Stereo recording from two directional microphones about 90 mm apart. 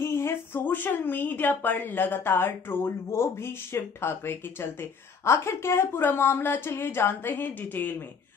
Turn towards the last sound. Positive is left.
turn(degrees=20)  # may be behind; listen again after turning